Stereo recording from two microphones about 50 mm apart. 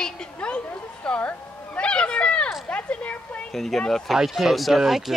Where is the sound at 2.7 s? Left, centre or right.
Left.